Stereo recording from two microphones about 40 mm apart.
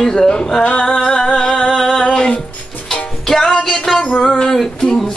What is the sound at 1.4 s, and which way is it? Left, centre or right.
Music, centre.